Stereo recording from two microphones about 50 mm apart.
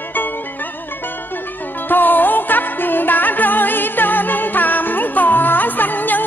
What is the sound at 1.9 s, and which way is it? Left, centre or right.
Music, left.